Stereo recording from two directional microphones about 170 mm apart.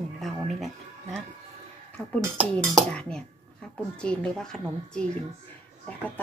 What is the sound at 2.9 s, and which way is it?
Speech, 5° left (ahead or behind).